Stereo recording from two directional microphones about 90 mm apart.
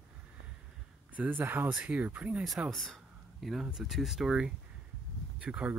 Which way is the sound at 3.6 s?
5° right (ahead or behind).